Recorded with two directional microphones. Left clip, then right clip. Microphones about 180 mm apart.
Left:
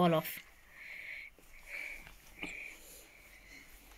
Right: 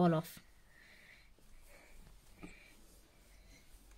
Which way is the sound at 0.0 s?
40° right (ahead or behind).